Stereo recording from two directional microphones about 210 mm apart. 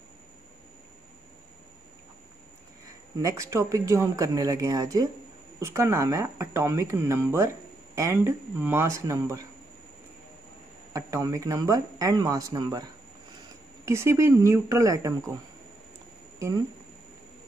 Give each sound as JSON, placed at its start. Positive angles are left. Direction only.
{"t": 3.2, "sound": "speech", "side_deg": -15}
{"t": 10.9, "sound": "speech", "side_deg": -15}
{"t": 16.3, "sound": "speech", "side_deg": -15}